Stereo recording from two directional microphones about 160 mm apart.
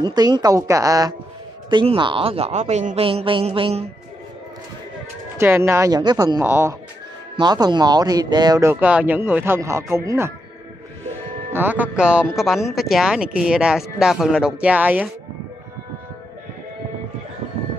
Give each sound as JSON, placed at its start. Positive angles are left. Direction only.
{"t": 0.0, "sound": "speech", "side_deg": -25}
{"t": 3.1, "sound": "speech", "side_deg": -35}
{"t": 5.4, "sound": "speech", "side_deg": -15}
{"t": 6.4, "sound": "speech", "side_deg": -15}
{"t": 7.3, "sound": "speech", "side_deg": -25}
{"t": 11.5, "sound": "speech", "side_deg": -10}